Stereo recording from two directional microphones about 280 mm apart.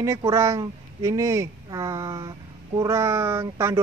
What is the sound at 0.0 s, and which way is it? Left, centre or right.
Speech, centre.